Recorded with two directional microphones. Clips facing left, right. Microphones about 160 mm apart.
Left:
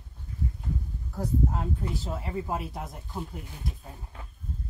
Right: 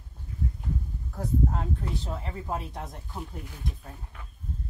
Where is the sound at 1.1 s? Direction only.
Centre (ahead or behind).